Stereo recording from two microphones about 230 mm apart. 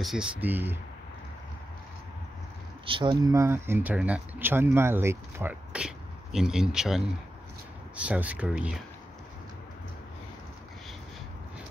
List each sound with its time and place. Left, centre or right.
0.0 s speech: centre
2.9 s speech: right; by 8.7 s centre